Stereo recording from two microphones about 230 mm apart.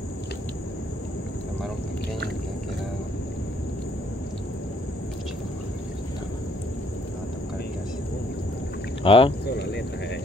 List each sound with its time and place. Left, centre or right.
9.0 s speech: left
9.6 s cricket: left